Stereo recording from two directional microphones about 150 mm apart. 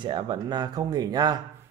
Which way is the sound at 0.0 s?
30° right (ahead or behind).